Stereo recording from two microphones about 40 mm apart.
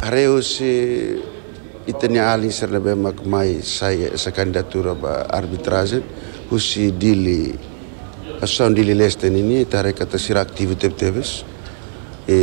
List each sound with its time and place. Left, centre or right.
0.0 s speech: centre